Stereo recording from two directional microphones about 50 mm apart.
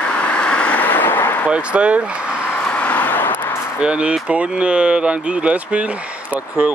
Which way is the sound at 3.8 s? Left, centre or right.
Right.